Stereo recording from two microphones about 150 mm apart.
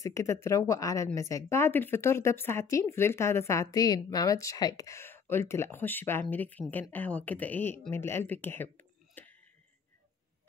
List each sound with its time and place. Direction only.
0.0 s a woman's voice: 20° left (ahead or behind)